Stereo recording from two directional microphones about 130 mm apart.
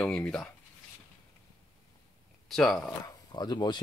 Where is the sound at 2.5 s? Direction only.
Centre (ahead or behind).